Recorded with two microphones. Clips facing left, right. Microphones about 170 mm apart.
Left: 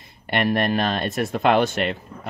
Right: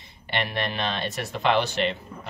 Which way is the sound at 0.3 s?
50° left (ahead or behind).